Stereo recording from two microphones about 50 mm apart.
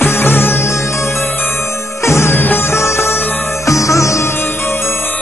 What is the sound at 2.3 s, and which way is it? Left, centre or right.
Music, left.